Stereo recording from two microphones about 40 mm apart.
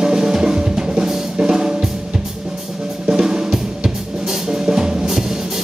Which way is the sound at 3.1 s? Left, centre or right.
Centre.